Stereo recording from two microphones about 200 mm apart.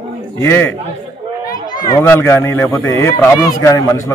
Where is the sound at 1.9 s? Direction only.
15° left (ahead or behind).